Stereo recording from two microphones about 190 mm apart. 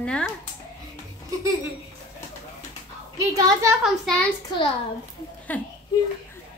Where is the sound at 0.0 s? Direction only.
5° left (ahead or behind).